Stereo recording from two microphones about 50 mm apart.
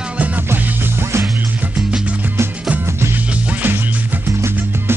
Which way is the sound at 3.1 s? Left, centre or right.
Right.